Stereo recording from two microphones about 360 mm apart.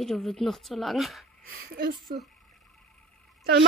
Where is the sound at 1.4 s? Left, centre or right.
Right.